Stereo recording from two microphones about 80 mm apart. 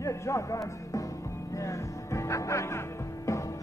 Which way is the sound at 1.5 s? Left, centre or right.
Left.